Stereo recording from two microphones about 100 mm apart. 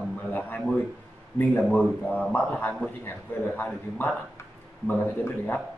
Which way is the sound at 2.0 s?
15° left (ahead or behind).